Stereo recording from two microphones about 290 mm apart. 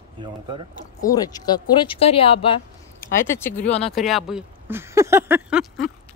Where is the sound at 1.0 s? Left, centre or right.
Centre.